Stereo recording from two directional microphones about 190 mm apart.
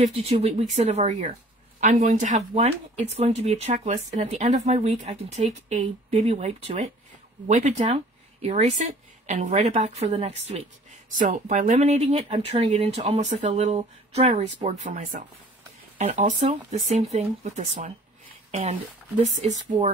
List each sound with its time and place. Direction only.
0.0 s speech: 35° right (ahead or behind)